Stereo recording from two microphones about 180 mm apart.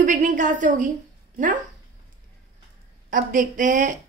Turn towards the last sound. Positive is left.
turn(degrees=-45)  # may be behind; listen again after turning